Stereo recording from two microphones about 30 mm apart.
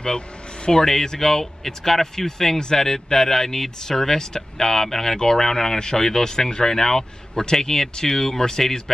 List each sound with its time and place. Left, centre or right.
0.8 s speech: centre